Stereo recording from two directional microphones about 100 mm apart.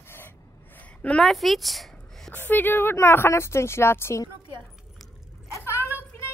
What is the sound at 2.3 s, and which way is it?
Speech, 20° left (ahead or behind).